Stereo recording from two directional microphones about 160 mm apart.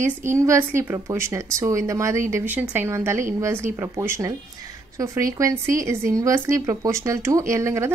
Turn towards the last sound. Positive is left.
turn(degrees=-15)  # may be behind; listen again after turning